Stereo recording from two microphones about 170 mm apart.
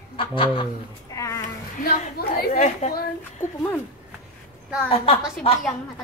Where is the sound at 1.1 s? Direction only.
20° left (ahead or behind).